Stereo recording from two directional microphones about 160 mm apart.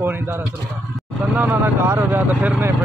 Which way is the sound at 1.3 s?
10° right (ahead or behind).